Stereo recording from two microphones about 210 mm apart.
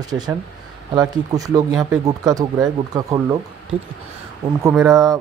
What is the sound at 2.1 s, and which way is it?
Speech, 15° right (ahead or behind).